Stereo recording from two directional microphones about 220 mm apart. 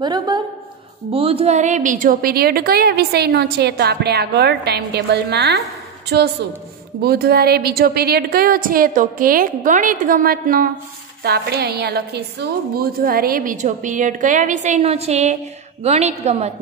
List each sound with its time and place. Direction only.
0.0 s a woman's voice: 20° right (ahead or behind)